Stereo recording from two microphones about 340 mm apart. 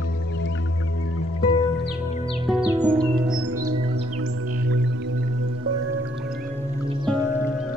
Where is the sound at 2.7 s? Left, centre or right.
Centre.